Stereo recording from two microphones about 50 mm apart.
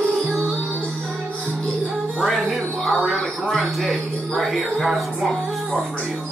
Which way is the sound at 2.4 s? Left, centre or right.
Centre.